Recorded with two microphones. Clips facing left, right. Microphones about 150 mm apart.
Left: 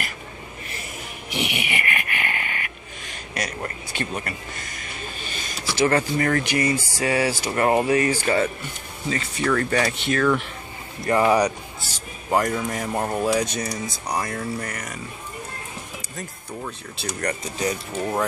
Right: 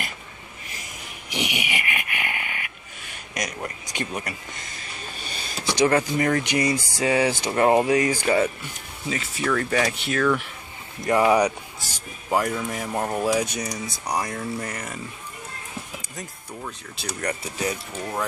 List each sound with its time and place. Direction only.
1.3 s a sound: 15° right (ahead or behind)
3.1 s speech: 10° right (ahead or behind)
5.7 s speech: 15° right (ahead or behind)
13.3 s speech: 10° right (ahead or behind)
14.7 s speech: 25° right (ahead or behind)
16.6 s speech: 5° right (ahead or behind)